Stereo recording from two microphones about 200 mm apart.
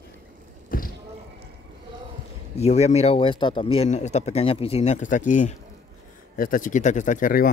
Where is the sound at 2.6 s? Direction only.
30° left (ahead or behind).